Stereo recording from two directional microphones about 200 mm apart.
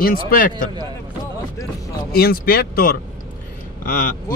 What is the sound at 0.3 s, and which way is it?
Speech, 45° left (ahead or behind).